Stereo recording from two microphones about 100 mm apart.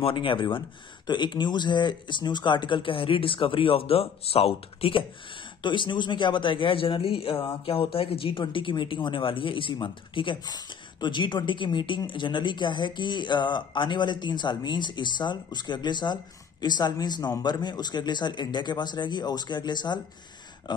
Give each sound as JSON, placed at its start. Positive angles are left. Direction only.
{"t": 0.0, "sound": "speech", "side_deg": 60}